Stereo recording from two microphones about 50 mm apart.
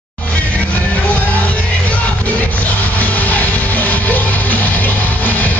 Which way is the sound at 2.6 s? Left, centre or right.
Left.